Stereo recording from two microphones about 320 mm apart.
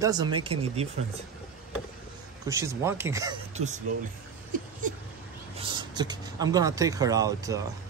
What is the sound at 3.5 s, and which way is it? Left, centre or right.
Speech, right.